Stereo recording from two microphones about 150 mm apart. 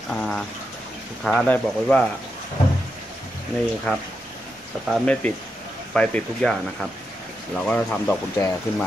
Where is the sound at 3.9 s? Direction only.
5° left (ahead or behind).